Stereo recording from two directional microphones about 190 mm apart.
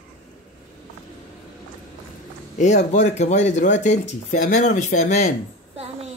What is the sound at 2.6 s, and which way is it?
Speech, 40° left (ahead or behind).